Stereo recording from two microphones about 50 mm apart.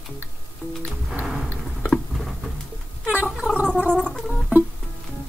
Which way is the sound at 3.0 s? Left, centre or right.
Right.